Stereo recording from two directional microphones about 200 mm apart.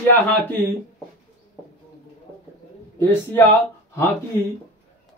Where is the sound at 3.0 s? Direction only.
10° left (ahead or behind).